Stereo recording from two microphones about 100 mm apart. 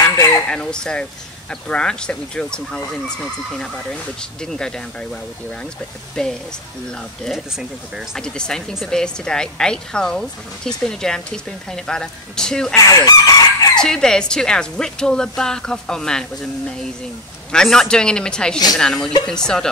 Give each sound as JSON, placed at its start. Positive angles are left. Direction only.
{"t": 0.5, "sound": "speech", "side_deg": 10}
{"t": 8.2, "sound": "speech", "side_deg": 10}
{"t": 12.7, "sound": "chicken", "side_deg": 35}
{"t": 13.7, "sound": "speech", "side_deg": 5}
{"t": 17.5, "sound": "speech", "side_deg": 5}